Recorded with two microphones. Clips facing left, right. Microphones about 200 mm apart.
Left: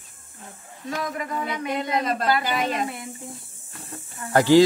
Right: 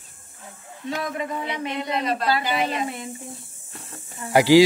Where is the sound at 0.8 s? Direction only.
25° right (ahead or behind).